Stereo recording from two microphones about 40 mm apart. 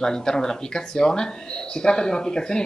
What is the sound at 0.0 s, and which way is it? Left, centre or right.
Speech, centre.